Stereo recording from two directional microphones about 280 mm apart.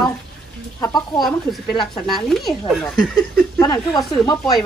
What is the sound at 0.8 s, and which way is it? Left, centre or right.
Speech, centre.